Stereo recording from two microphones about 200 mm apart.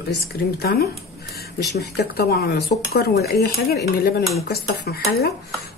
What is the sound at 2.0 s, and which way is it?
Speech, 50° left (ahead or behind).